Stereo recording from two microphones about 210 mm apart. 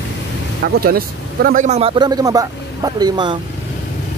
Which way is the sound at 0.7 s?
45° right (ahead or behind).